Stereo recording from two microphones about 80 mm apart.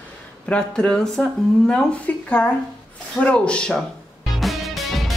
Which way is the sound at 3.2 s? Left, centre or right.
Centre.